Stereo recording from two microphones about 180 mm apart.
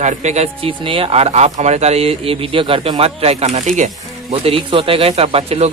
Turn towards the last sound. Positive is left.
turn(degrees=-35)  # may be behind; listen again after turning